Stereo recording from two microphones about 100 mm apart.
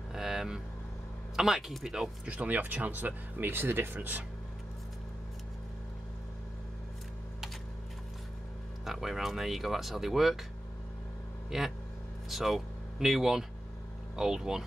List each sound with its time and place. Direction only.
0.1 s vehicle: 5° right (ahead or behind)
1.3 s speech: centre (ahead or behind); by 4.2 s 20° right (ahead or behind)
8.8 s speech: centre (ahead or behind)
11.5 s speech: 5° right (ahead or behind)